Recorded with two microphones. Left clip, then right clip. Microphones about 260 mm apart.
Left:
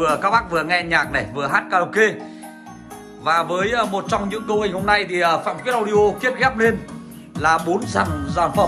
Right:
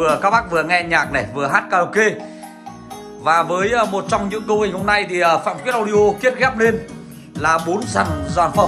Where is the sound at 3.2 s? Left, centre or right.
Centre.